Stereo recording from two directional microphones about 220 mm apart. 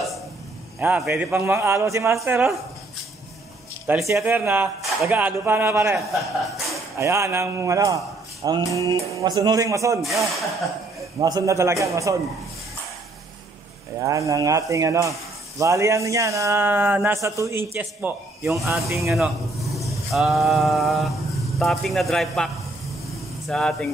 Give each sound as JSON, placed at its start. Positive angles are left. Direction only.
{"t": 0.7, "sound": "a man's voice", "side_deg": -10}
{"t": 3.8, "sound": "a man's voice", "side_deg": -5}
{"t": 7.0, "sound": "a man's voice", "side_deg": -10}
{"t": 10.0, "sound": "speech", "side_deg": 0}
{"t": 11.1, "sound": "a man's voice", "side_deg": -15}
{"t": 13.9, "sound": "a man's voice", "side_deg": -15}
{"t": 19.1, "sound": "speech", "side_deg": 0}